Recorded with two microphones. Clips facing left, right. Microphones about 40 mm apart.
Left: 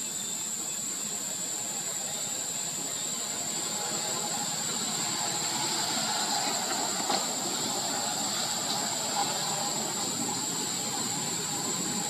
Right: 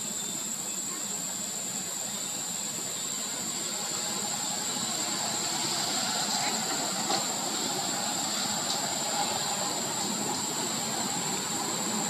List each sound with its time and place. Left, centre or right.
5.0 s vehicle: centre